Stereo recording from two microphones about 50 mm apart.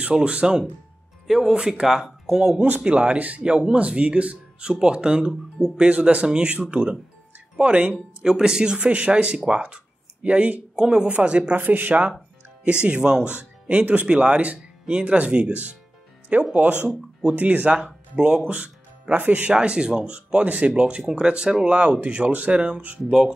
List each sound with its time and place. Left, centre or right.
0.1 s speech: right
2.8 s speech: right
11.5 s speech: right
12.8 s speech: centre
19.5 s speech: centre